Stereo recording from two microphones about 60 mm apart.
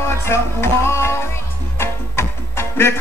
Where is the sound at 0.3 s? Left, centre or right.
Left.